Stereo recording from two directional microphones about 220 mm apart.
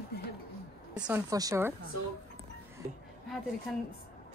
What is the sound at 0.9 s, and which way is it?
Speech, 5° right (ahead or behind).